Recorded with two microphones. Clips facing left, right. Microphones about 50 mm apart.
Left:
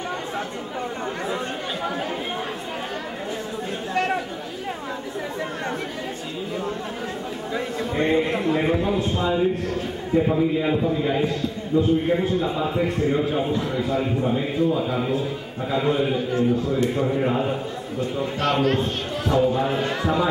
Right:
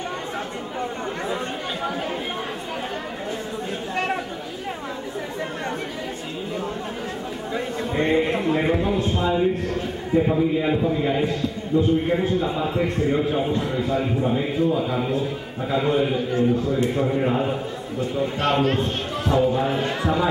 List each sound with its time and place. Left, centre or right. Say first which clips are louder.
7.9 s a sound: right 1 dB; centre
10.1 s a man's voice: even; centre
13.6 s a man's voice: even; right
13.8 s a man's voice: right 1 dB; centre
18.4 s a man's voice: even; right
18.8 s a man's voice: even; centre